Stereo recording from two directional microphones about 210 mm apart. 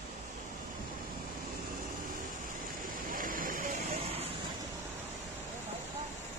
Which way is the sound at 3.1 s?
40° right (ahead or behind).